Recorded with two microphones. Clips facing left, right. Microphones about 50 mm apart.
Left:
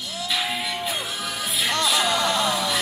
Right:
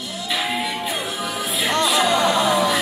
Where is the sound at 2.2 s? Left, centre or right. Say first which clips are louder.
Right 5 dB; right.